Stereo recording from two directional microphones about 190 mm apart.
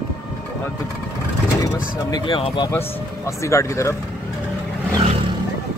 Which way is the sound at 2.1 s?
25° left (ahead or behind).